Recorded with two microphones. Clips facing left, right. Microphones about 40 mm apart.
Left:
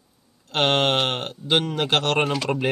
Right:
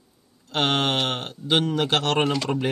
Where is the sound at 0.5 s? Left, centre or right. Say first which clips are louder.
Left 2 dB; left.